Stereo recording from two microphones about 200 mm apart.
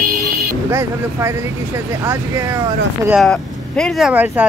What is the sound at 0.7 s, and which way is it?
Speech, 10° right (ahead or behind).